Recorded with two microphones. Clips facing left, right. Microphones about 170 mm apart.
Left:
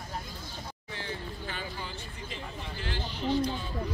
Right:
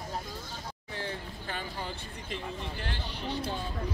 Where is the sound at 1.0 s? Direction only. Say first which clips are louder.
Even; 50° right (ahead or behind).